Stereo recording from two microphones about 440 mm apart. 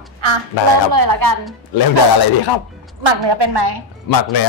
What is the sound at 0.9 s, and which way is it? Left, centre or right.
Speech, right.